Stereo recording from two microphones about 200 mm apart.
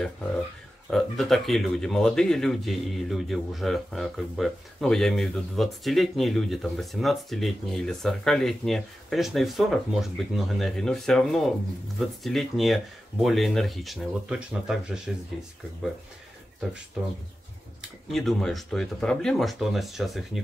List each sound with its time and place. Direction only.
0.8 s speech: centre (ahead or behind)
18.1 s speech: centre (ahead or behind)